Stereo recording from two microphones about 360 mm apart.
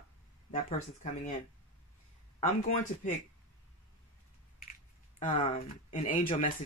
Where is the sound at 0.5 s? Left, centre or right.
Left.